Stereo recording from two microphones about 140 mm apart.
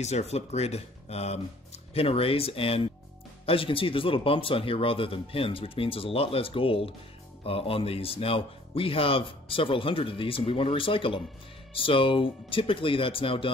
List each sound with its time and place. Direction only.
0.0 s speech: 50° left (ahead or behind)